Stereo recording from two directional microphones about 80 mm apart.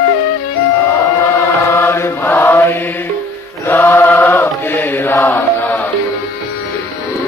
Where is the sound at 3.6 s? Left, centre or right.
Left.